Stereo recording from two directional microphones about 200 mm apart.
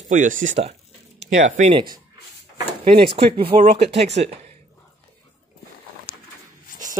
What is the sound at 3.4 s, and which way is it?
Speech, 30° right (ahead or behind).